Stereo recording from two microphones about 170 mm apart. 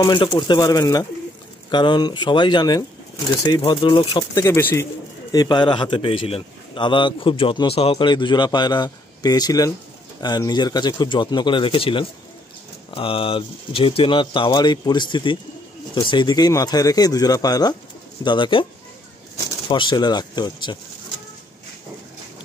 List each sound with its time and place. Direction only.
0.0 s a man's voice: 25° left (ahead or behind)
4.5 s speech: 15° left (ahead or behind)
5.3 s a man's voice: 25° left (ahead or behind)
19.7 s a man's voice: 25° left (ahead or behind)